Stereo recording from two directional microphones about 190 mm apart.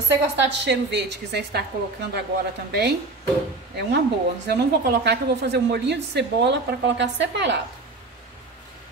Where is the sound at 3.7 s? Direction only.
60° right (ahead or behind).